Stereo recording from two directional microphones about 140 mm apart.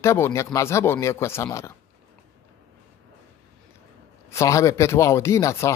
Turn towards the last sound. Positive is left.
turn(degrees=20)  # may be behind; listen again after turning